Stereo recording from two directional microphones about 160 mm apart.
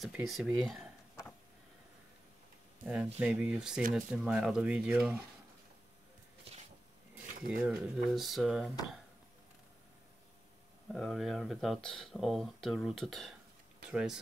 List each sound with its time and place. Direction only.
0.0 s speech: centre (ahead or behind)
2.8 s speech: 10° right (ahead or behind)
6.5 s a sound: 40° right (ahead or behind)
7.6 s speech: 5° right (ahead or behind)
10.9 s speech: centre (ahead or behind)